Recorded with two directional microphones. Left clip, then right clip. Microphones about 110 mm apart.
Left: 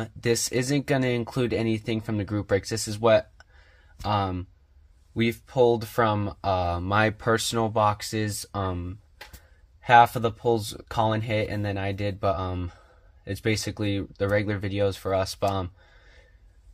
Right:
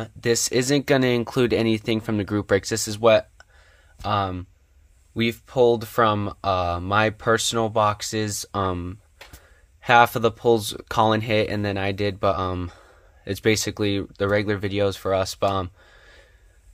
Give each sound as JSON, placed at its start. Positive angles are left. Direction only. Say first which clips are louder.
{"t": 0.2, "sound": "speech", "louder": "right 4 dB", "side_deg": -25}
{"t": 3.3, "sound": "a sound", "louder": "right 3 dB", "side_deg": -10}
{"t": 5.1, "sound": "speech", "louder": "right 2 dB", "side_deg": -30}